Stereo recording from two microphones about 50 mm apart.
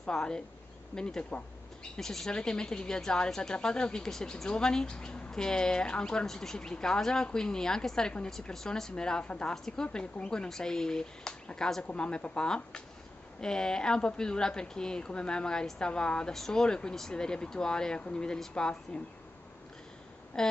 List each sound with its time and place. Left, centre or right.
0.0 s speech: centre
20.4 s speech: centre